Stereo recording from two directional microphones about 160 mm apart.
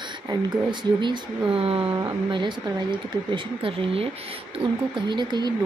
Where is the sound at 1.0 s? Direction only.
30° right (ahead or behind).